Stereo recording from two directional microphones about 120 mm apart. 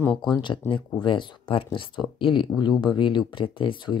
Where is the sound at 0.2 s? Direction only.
40° left (ahead or behind).